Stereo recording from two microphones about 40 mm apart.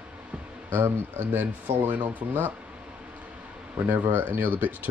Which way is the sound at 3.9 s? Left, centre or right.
Right.